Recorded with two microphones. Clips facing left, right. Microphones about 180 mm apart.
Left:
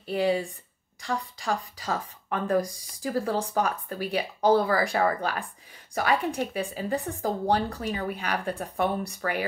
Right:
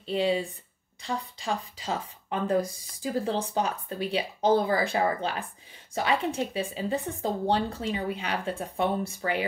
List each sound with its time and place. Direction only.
0.0 s speech: 25° right (ahead or behind)